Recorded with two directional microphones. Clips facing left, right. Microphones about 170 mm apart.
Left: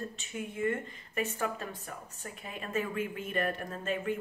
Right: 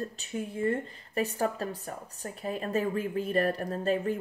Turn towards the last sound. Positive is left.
turn(degrees=-35)  # may be behind; listen again after turning